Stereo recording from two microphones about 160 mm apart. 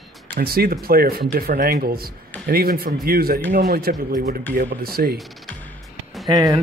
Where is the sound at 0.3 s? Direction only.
70° right (ahead or behind).